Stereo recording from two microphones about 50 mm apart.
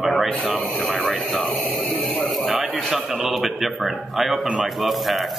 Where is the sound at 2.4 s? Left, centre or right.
Right.